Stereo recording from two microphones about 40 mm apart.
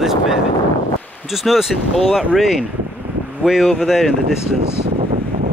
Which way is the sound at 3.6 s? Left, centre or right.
Centre.